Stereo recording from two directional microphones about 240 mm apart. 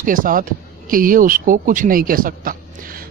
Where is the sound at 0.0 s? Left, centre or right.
Right.